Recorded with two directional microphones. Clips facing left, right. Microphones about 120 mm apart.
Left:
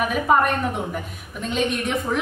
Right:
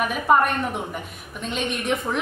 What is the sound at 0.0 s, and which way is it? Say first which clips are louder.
A woman's voice: even; centre (ahead or behind).